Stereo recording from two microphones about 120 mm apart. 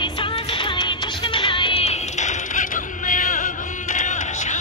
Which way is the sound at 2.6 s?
90° left.